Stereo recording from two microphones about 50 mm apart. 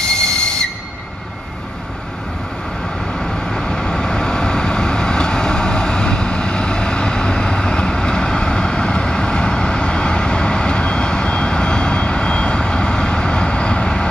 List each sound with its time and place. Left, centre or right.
0.0 s whistle: centre
3.2 s vehicle: centre